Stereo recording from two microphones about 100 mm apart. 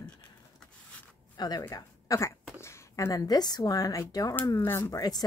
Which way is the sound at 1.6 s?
35° left (ahead or behind).